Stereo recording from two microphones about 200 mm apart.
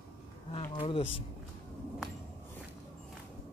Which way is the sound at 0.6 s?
30° left (ahead or behind).